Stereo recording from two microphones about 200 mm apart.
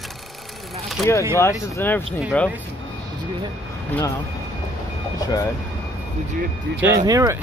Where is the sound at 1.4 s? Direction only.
10° left (ahead or behind).